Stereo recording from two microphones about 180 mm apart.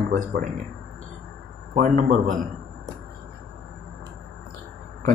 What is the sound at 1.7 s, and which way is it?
Speech, 45° right (ahead or behind).